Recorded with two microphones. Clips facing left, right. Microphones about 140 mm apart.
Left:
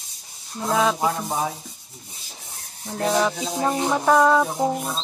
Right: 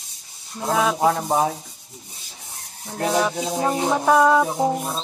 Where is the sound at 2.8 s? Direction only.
5° left (ahead or behind).